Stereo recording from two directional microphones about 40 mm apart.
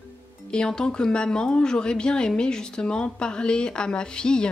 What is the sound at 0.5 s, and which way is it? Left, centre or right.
Speech, centre.